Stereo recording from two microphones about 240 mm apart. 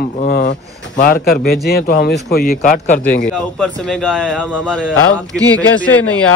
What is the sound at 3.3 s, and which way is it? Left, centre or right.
A man's voice, centre.